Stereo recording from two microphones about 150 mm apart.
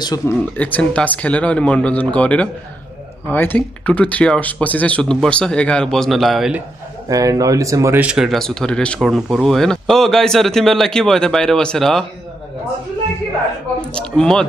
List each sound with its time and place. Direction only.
0.2 s speech: 15° left (ahead or behind); by 6.6 s centre (ahead or behind)
7.1 s speech: 25° right (ahead or behind)
8.0 s speech: 5° right (ahead or behind)
13.7 s speech: 5° left (ahead or behind)